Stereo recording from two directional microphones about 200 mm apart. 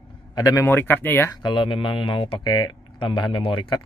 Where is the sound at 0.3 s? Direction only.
20° left (ahead or behind).